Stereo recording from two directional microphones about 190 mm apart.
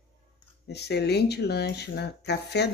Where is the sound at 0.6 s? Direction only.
60° left (ahead or behind).